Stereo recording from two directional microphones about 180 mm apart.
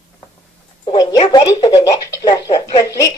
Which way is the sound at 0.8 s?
25° left (ahead or behind).